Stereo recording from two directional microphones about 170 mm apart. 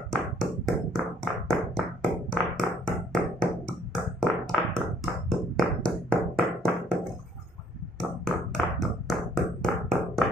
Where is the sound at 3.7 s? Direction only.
5° left (ahead or behind).